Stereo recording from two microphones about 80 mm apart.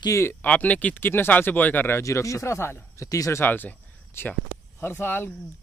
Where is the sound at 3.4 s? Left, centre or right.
Left.